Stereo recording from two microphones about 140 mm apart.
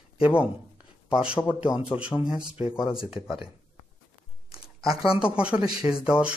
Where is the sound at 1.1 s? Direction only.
5° right (ahead or behind).